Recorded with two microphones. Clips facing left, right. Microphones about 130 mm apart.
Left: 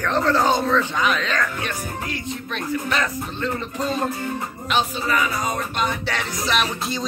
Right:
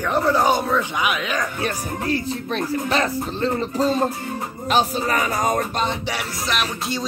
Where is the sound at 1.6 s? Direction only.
35° right (ahead or behind).